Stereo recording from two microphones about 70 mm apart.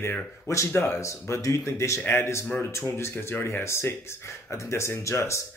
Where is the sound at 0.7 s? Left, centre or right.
Left.